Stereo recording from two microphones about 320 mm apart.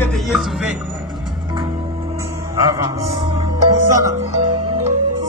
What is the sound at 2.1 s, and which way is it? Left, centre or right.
Music, centre.